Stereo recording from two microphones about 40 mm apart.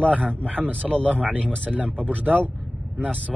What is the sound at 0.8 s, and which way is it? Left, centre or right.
Speech, left.